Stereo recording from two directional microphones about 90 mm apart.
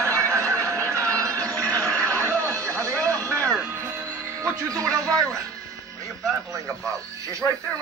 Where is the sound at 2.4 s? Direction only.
35° right (ahead or behind).